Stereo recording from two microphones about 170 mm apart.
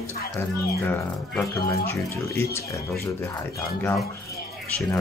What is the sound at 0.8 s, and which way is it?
Speech, 10° left (ahead or behind).